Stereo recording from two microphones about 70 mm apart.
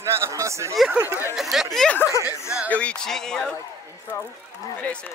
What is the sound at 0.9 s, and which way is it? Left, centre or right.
Speech, right.